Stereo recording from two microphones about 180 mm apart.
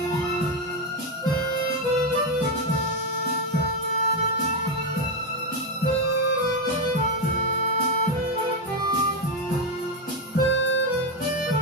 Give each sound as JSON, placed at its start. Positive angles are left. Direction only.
{"t": 10.3, "sound": "music", "side_deg": 90}